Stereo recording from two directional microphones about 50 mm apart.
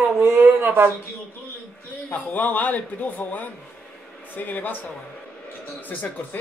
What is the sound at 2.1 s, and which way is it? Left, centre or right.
A man's voice, left.